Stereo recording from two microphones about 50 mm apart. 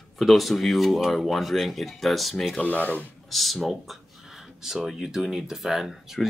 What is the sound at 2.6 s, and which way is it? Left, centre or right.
Speech, left.